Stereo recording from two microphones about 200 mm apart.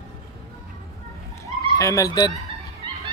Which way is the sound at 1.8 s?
15° left (ahead or behind).